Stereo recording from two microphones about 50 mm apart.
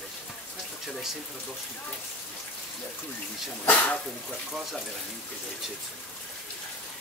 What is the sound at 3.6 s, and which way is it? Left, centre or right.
Speech, left.